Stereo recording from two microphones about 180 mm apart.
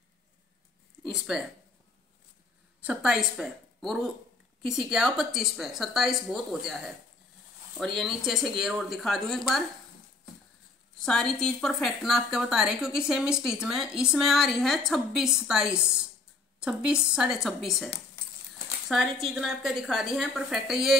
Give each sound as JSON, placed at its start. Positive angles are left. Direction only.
{"t": 1.0, "sound": "speech", "side_deg": 0}
{"t": 2.8, "sound": "a woman's voice", "side_deg": -5}
{"t": 11.0, "sound": "a woman's voice", "side_deg": 5}